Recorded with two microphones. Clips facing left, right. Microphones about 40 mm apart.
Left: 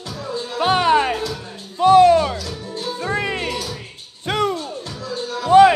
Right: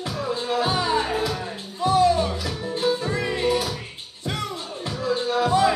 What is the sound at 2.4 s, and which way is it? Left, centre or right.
Music, right.